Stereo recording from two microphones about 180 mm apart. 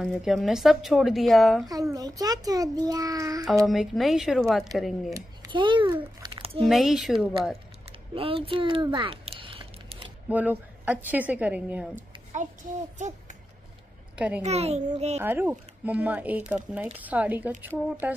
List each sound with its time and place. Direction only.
0.0 s speech: 5° right (ahead or behind)
1.7 s a child's voice: 20° right (ahead or behind)
3.6 s speech: centre (ahead or behind)
5.1 s a child's voice: 25° right (ahead or behind)
5.9 s a sound: 25° right (ahead or behind)
6.7 s speech: centre (ahead or behind)
8.1 s a sound: 30° right (ahead or behind)
10.3 s speech: 10° right (ahead or behind)
11.9 s a sound: 40° right (ahead or behind)
14.1 s a woman's voice: 5° right (ahead or behind)
14.4 s a child's voice: 35° right (ahead or behind)
15.1 s speech: 10° right (ahead or behind)